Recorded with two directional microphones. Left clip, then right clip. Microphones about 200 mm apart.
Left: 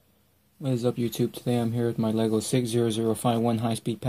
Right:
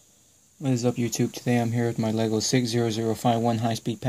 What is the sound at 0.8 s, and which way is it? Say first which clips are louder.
Speech: left 1 dB; 30° right (ahead or behind).